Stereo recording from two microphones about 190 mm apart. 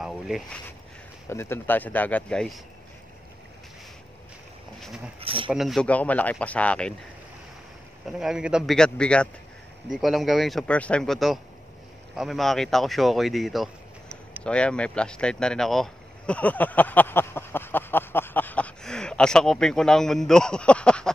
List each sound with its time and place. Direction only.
1.3 s speech: 15° left (ahead or behind)
4.7 s speech: centre (ahead or behind)
5.2 s speech: 30° right (ahead or behind)
5.5 s speech: centre (ahead or behind)
8.2 s speech: 5° right (ahead or behind)